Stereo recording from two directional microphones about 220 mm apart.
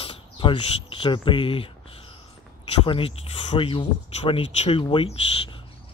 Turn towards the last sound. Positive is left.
turn(degrees=25)  # may be behind; listen again after turning